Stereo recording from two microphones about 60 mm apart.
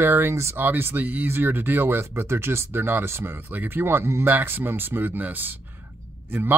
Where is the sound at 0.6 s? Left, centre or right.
Right.